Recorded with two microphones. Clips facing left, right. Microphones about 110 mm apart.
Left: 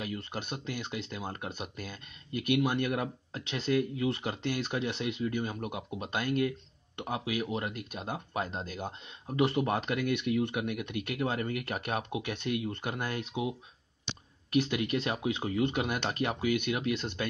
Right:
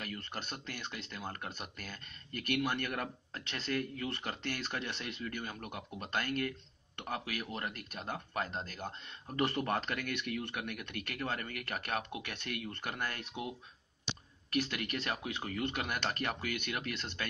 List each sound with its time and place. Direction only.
0.0 s speech: 15° left (ahead or behind)